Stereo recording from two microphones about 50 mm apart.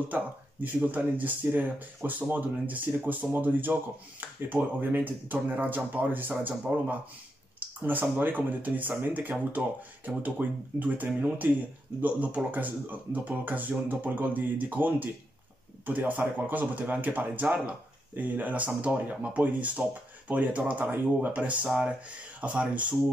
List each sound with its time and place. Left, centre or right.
0.1 s speech: right